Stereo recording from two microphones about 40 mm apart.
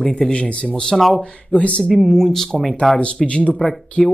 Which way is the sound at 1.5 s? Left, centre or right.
Left.